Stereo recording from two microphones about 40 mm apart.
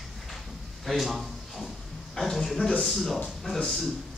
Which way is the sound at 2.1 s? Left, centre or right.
Centre.